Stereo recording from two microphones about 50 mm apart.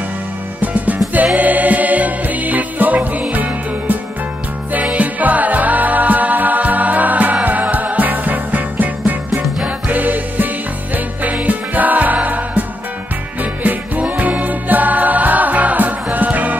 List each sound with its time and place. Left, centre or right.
0.6 s music: right
4.9 s music: right